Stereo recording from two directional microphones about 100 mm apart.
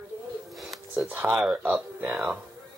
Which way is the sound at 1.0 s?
15° right (ahead or behind).